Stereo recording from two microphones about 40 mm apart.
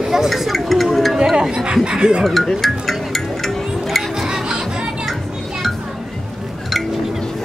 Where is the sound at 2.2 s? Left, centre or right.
Centre.